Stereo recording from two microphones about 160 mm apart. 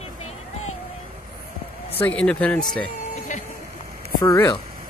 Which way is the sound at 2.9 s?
50° left (ahead or behind).